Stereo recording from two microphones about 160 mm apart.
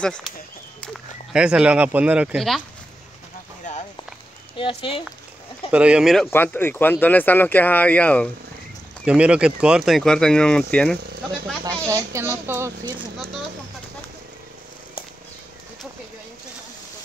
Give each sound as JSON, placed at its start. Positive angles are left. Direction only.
{"t": 0.0, "sound": "speech", "side_deg": 5}
{"t": 1.3, "sound": "speech", "side_deg": -5}
{"t": 4.6, "sound": "speech", "side_deg": 35}
{"t": 5.7, "sound": "speech", "side_deg": -5}
{"t": 6.3, "sound": "speech", "side_deg": 15}
{"t": 9.0, "sound": "speech", "side_deg": -5}
{"t": 11.6, "sound": "speech", "side_deg": -20}